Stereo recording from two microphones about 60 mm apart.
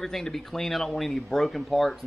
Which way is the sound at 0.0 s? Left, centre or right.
Centre.